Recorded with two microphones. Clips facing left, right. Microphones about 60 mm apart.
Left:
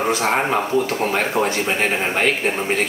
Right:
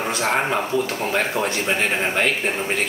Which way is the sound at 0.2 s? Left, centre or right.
Centre.